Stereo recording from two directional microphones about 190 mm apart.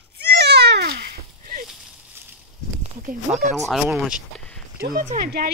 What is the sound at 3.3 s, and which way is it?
Speech, 10° right (ahead or behind).